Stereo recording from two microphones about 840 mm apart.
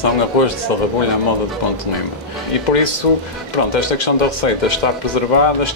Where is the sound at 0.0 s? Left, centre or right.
Left.